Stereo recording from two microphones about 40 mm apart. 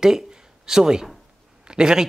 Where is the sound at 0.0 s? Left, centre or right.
Centre.